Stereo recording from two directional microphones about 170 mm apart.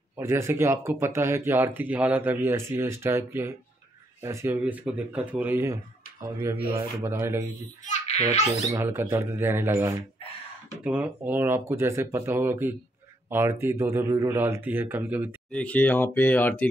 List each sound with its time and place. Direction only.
0.2 s speech: 15° right (ahead or behind)
8.3 s speech: 40° left (ahead or behind)
8.6 s speech: 15° right (ahead or behind)
15.5 s speech: 5° left (ahead or behind)